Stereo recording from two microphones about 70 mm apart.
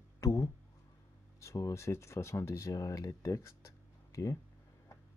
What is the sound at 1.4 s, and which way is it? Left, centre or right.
Speech, left.